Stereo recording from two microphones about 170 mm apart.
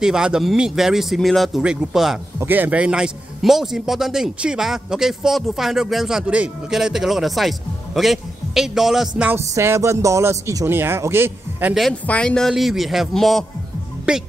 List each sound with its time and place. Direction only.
0.0 s speech: 5° right (ahead or behind)
11.7 s speech: 5° left (ahead or behind)